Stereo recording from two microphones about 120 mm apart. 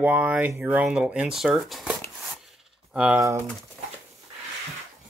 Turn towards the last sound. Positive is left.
turn(degrees=-25)  # may be behind; listen again after turning